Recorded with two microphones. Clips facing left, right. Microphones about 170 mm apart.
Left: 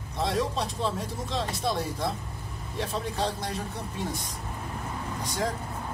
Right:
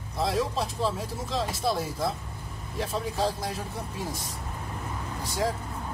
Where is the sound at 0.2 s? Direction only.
5° right (ahead or behind).